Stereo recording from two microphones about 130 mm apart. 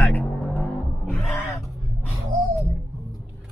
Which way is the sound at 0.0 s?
15° left (ahead or behind).